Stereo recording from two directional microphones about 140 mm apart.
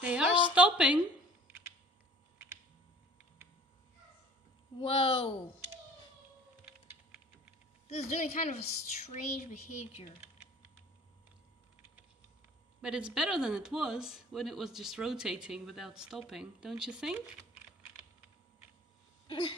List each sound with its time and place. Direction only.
0.0 s a sound: 10° right (ahead or behind)
0.6 s a woman's voice: 10° right (ahead or behind)
4.7 s speech: 40° left (ahead or behind)
7.9 s a woman's voice: 50° left (ahead or behind)
12.8 s speech: 5° right (ahead or behind)